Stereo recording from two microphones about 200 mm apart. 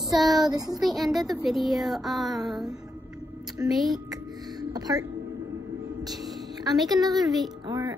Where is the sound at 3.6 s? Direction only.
15° right (ahead or behind).